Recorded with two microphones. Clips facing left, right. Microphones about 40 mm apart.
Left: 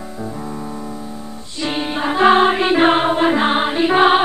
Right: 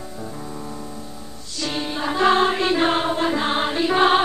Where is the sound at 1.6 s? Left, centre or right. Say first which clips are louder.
Left 5 dB; left.